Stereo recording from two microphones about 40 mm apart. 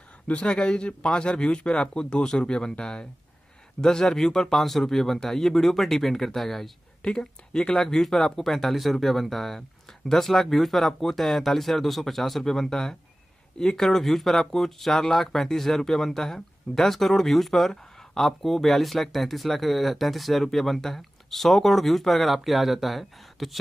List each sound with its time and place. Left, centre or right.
0.3 s a man's voice: left; by 6.7 s centre
7.0 s a man's voice: left
13.8 s speech: centre